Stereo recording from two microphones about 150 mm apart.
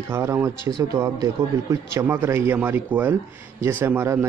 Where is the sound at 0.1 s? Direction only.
15° right (ahead or behind).